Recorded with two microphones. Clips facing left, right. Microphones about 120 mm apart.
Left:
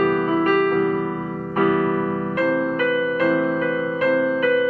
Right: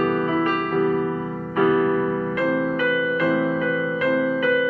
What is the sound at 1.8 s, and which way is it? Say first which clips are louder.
Music: right 1 dB; 30° left (ahead or behind).